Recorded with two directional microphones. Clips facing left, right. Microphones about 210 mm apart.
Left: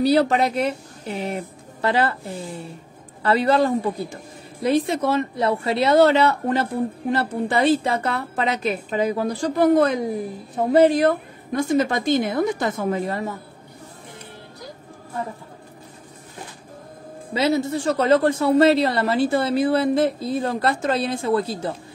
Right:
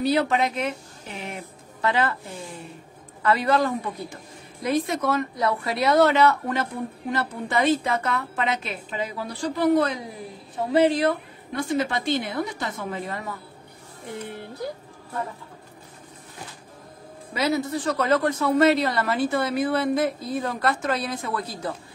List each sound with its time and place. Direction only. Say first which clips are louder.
0.0 s a woman's voice: left 4 dB; 35° left (ahead or behind)
3.2 s a woman's voice: left 3 dB; 30° left (ahead or behind); by 9.9 s 50° left (ahead or behind)
11.0 s a woman's voice: left 4 dB; 45° left (ahead or behind)
17.3 s a woman's voice: left 4 dB; 25° left (ahead or behind)